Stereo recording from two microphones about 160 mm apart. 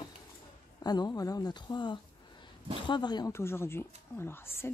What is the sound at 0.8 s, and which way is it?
Speech, 25° left (ahead or behind).